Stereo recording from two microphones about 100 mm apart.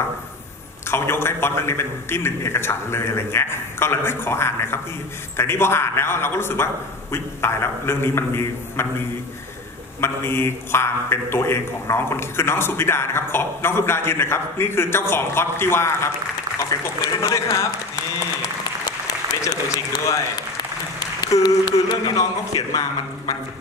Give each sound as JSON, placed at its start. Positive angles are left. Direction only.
{"t": 0.8, "sound": "a man's voice", "side_deg": 25}
{"t": 9.9, "sound": "a man's voice", "side_deg": 25}
{"t": 19.4, "sound": "a man's voice", "side_deg": 30}